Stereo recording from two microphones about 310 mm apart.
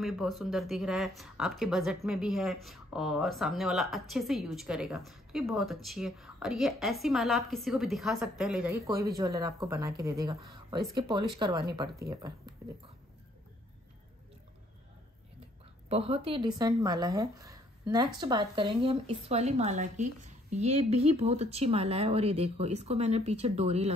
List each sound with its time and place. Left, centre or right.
0.0 s speech: centre
11.3 s speech: centre
15.9 s speech: centre